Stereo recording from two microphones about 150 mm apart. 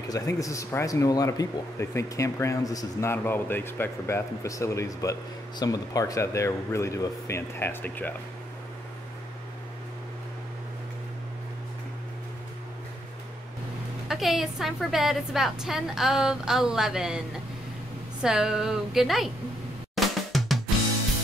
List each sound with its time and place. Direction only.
0.1 s speech: 20° left (ahead or behind)
14.0 s a woman's voice: centre (ahead or behind)
18.2 s a woman's voice: 5° right (ahead or behind)
20.0 s drum: centre (ahead or behind)
20.3 s music: centre (ahead or behind)